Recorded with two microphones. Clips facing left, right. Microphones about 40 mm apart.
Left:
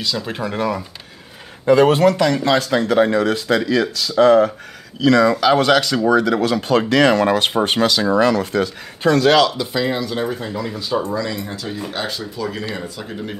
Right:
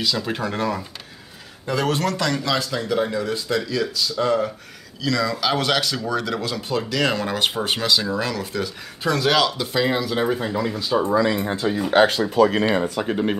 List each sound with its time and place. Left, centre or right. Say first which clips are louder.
0.0 s speech: even; centre
1.7 s speech: left 10 dB; left
2.6 s speech: left 7 dB; left
5.0 s speech: left 9 dB; left
5.9 s speech: left 9 dB; left
6.7 s speech: left 8 dB; left
9.1 s speech: left 5 dB; centre
11.0 s speech: right 4 dB; right
11.9 s speech: right 9 dB; right